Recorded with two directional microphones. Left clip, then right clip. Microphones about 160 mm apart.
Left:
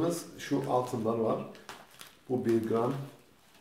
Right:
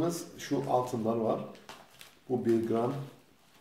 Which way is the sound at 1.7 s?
25° left (ahead or behind).